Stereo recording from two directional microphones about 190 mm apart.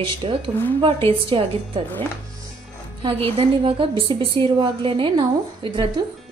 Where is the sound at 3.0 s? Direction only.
30° right (ahead or behind).